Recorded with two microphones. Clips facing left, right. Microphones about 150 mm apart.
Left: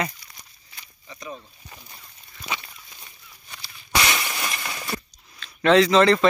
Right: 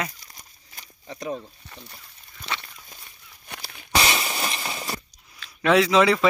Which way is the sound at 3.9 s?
25° right (ahead or behind).